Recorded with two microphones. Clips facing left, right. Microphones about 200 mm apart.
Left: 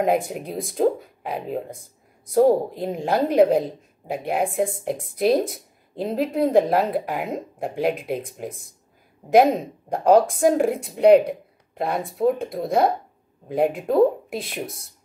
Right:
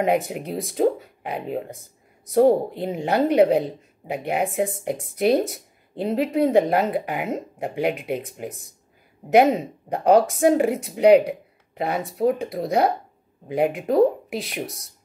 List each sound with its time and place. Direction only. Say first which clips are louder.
0.0 s speech: even; centre (ahead or behind)